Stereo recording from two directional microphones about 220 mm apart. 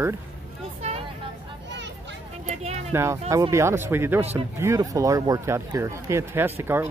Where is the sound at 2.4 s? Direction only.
30° right (ahead or behind).